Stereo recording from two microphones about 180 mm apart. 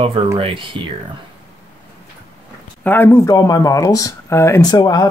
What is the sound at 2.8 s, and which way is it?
Speech, 10° left (ahead or behind).